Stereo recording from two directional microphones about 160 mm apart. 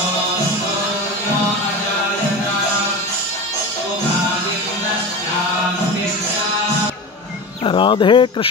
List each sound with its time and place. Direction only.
7.6 s speech: 30° left (ahead or behind)